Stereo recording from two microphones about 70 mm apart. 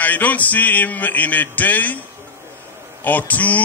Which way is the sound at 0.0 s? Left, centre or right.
Left.